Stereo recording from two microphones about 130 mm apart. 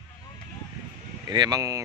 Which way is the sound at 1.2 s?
30° right (ahead or behind).